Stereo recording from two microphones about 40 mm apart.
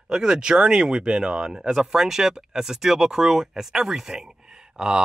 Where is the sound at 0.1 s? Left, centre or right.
Centre.